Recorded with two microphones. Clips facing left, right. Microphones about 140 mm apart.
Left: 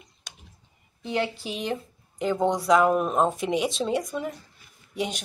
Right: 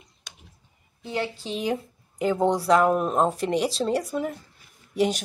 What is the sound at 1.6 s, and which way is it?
Speech, 5° right (ahead or behind).